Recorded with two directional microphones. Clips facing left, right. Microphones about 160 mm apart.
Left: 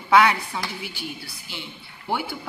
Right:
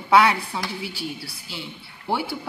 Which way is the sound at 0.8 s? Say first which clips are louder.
Right 3 dB; 35° right (ahead or behind).